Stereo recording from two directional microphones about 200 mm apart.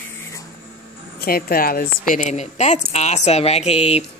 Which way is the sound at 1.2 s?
50° left (ahead or behind).